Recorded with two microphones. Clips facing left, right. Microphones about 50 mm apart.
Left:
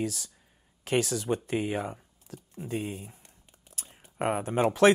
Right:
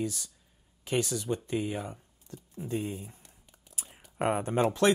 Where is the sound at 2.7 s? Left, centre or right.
Left.